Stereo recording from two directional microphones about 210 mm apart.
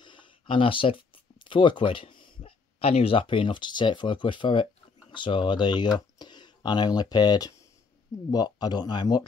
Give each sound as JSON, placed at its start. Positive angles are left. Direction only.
{"t": 0.0, "sound": "speech", "side_deg": 25}